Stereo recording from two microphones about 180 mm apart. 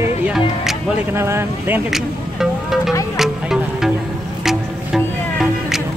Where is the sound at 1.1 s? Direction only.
15° right (ahead or behind).